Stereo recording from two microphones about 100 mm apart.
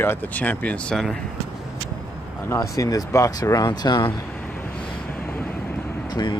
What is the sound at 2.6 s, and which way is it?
Speech, 40° left (ahead or behind).